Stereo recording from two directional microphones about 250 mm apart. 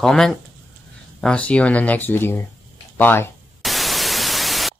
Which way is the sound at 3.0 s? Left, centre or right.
Centre.